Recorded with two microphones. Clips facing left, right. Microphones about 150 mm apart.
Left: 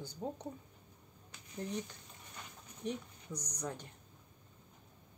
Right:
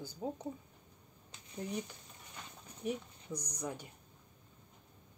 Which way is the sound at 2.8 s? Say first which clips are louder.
Right 2 dB; 10° right (ahead or behind).